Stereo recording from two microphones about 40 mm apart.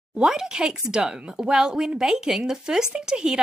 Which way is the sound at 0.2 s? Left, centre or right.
Centre.